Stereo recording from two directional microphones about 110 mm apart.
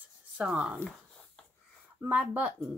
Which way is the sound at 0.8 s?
10° left (ahead or behind).